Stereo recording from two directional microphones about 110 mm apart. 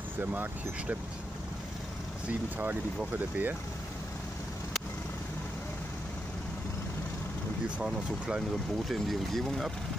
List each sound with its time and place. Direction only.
0.2 s speech: 15° right (ahead or behind)
2.2 s speech: 15° right (ahead or behind)
7.8 s speech: 5° right (ahead or behind)